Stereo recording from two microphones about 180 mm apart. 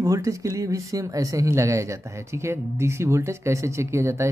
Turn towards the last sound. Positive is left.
turn(degrees=-15)  # may be behind; listen again after turning